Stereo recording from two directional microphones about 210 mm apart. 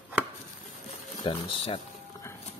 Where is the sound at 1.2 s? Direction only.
30° left (ahead or behind).